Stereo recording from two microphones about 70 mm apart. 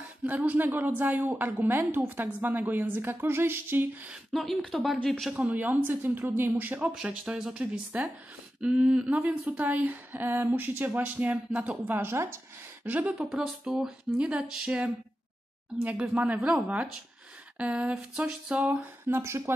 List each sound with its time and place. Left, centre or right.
0.2 s speech: right
4.3 s speech: centre
5.5 s speech: right
6.9 s speech: centre
9.5 s speech: right
12.0 s speech: right
12.8 s speech: right
13.4 s speech: centre
15.8 s speech: centre
19.0 s speech: right